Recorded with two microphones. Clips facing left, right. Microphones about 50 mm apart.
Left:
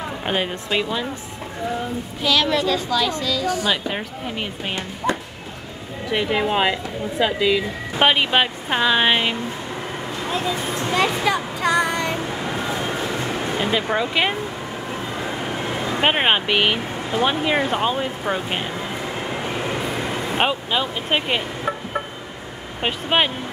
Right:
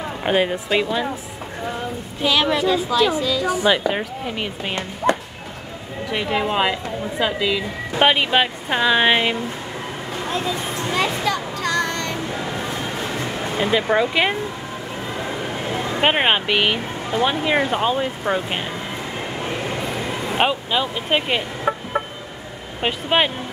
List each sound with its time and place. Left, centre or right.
0.2 s speech: centre
2.2 s a woman's voice: centre
3.9 s speech: centre
6.1 s speech: centre
11.2 s child singing: centre
13.6 s speech: centre
16.0 s speech: centre
20.3 s speech: centre
21.7 s music: centre
22.8 s speech: centre